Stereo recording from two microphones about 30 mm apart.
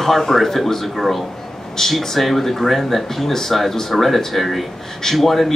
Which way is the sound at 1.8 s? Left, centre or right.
Centre.